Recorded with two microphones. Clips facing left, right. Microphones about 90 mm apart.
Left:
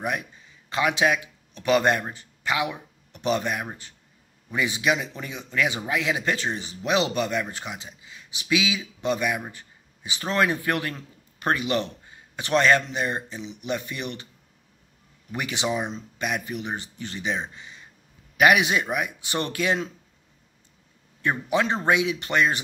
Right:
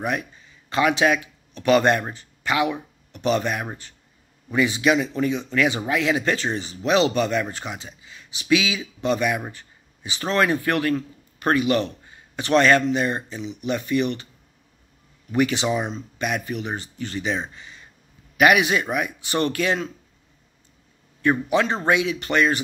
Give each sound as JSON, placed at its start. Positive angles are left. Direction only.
{"t": 0.0, "sound": "a man's voice", "side_deg": 10}
{"t": 15.3, "sound": "speech", "side_deg": 15}
{"t": 17.6, "sound": "a sound", "side_deg": 15}
{"t": 18.4, "sound": "speech", "side_deg": 20}
{"t": 21.2, "sound": "speech", "side_deg": 20}